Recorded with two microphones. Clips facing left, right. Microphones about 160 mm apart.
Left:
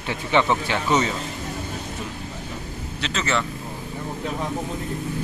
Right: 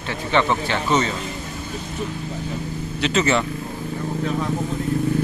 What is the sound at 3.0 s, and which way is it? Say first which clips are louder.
Speech: right 6 dB; 15° right (ahead or behind).